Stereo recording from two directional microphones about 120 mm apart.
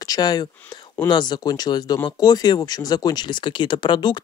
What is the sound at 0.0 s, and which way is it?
Speech, 30° left (ahead or behind).